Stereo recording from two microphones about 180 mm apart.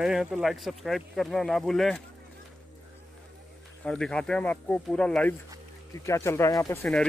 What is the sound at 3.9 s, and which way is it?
Speech, 5° left (ahead or behind).